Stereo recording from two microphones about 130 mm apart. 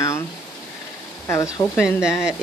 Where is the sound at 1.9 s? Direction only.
5° right (ahead or behind).